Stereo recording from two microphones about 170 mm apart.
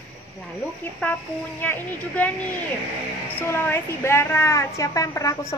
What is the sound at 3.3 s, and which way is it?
A woman's voice, 10° left (ahead or behind).